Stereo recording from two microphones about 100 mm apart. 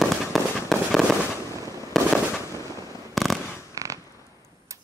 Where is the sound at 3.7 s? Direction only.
35° right (ahead or behind).